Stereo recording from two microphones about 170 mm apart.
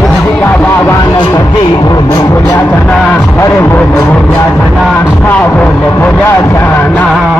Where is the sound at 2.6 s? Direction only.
10° left (ahead or behind).